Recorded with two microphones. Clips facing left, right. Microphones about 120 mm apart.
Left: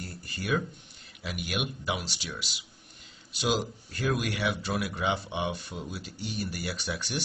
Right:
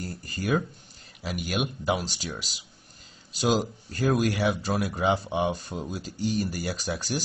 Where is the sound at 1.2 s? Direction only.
40° right (ahead or behind).